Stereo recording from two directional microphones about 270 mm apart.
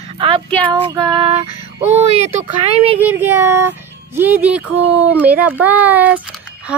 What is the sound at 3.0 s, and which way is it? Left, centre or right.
Music, centre.